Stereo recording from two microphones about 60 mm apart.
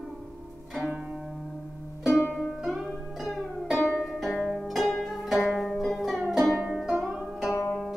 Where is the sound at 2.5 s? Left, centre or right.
Centre.